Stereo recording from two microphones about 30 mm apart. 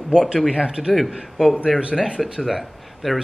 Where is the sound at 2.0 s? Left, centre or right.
Right.